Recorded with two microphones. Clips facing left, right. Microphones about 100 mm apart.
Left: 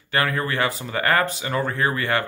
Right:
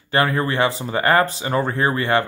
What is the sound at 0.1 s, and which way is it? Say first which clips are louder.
Speech: right 4 dB; 25° right (ahead or behind).